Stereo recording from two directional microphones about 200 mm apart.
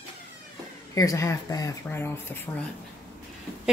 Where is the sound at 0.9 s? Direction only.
15° left (ahead or behind).